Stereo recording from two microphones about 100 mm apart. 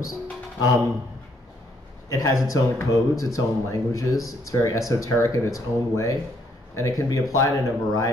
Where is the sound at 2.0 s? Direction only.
35° left (ahead or behind).